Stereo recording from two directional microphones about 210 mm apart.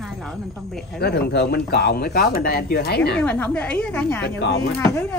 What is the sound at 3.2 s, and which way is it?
Speech, 5° left (ahead or behind).